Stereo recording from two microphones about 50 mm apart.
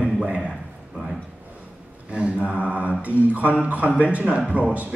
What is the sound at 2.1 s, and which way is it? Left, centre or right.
A man's voice, right.